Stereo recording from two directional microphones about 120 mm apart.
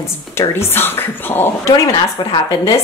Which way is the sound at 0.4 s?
20° left (ahead or behind).